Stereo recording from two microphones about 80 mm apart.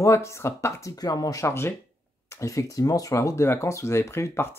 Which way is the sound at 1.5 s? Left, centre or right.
Left.